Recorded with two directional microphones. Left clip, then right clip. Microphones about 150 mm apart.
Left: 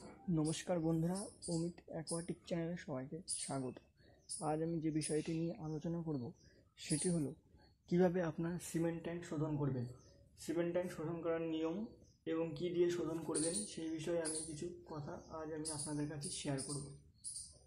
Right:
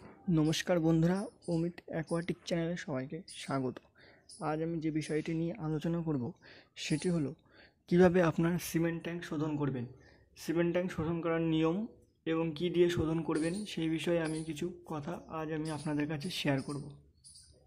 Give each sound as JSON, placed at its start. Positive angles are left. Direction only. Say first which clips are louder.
{"t": 0.3, "sound": "speech", "louder": "right 8 dB", "side_deg": -35}
{"t": 1.5, "sound": "speech", "louder": "right 7 dB", "side_deg": -20}
{"t": 2.4, "sound": "speech", "louder": "right 7 dB", "side_deg": -20}
{"t": 4.4, "sound": "speech", "louder": "right 4 dB", "side_deg": -5}
{"t": 5.6, "sound": "speech", "louder": "right 8 dB", "side_deg": -25}
{"t": 6.8, "sound": "speech", "louder": "right 6 dB", "side_deg": -15}
{"t": 8.1, "sound": "speech", "louder": "right 10 dB", "side_deg": -35}
{"t": 8.8, "sound": "speech", "louder": "right 5 dB", "side_deg": -5}
{"t": 12.3, "sound": "speech", "louder": "right 6 dB", "side_deg": -15}
{"t": 12.8, "sound": "speech", "louder": "right 7 dB", "side_deg": -30}